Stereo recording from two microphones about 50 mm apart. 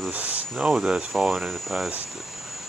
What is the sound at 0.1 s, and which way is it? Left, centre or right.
Cricket, right.